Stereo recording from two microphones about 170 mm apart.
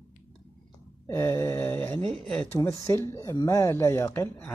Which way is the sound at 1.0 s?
15° left (ahead or behind).